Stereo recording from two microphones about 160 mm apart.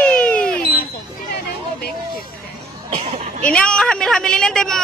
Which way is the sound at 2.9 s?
40° right (ahead or behind).